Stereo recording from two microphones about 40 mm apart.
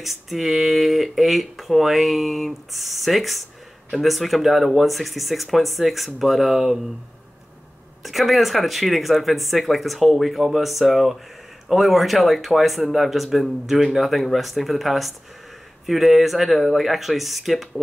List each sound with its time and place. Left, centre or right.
0.0 s speech: centre
8.0 s speech: centre